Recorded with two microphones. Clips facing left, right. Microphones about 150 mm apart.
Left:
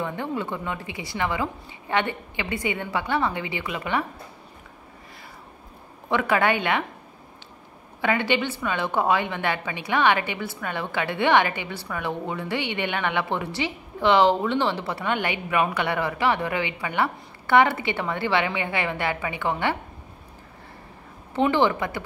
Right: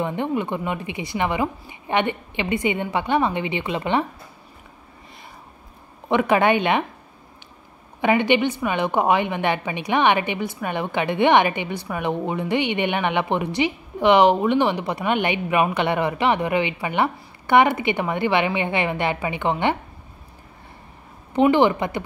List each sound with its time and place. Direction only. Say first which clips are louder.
0.0 s a woman's voice: right 5 dB; 20° right (ahead or behind)
6.0 s a woman's voice: right 4 dB; 20° right (ahead or behind)
8.0 s a woman's voice: right 5 dB; 20° right (ahead or behind)
21.4 s speech: right 4 dB; 15° right (ahead or behind)